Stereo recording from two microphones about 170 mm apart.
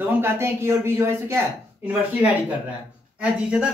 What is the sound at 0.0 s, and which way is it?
Speech, 15° right (ahead or behind).